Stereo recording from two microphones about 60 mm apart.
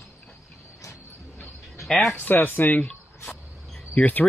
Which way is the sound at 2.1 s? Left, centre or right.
Left.